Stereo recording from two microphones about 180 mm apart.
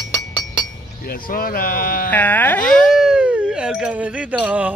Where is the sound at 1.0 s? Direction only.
55° left (ahead or behind).